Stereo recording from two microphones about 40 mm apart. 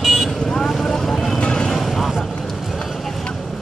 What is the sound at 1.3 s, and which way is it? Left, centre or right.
Vehicle, centre.